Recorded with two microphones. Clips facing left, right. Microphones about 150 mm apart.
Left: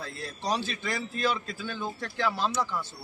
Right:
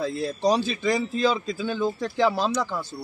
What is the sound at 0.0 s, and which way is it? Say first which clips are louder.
A man's voice: right 11 dB; 90° right.